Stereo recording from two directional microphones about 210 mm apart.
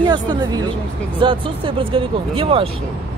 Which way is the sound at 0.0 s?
20° right (ahead or behind).